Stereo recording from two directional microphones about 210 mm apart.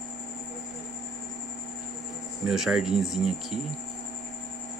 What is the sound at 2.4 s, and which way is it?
Speech, centre (ahead or behind).